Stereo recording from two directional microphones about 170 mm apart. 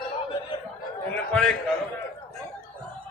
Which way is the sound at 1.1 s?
5° left (ahead or behind).